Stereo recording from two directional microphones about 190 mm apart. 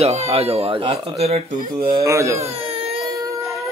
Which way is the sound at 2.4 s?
30° right (ahead or behind).